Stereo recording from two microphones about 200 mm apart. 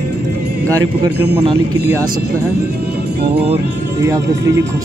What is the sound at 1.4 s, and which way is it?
Speech, 15° right (ahead or behind).